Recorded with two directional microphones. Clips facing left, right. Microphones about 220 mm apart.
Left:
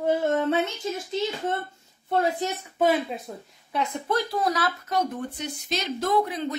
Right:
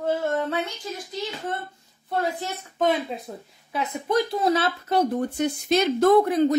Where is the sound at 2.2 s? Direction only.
20° left (ahead or behind).